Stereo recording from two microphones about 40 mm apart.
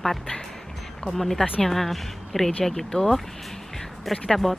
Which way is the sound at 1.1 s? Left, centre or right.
Centre.